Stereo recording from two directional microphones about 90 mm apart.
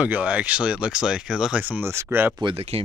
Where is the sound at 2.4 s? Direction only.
90° right.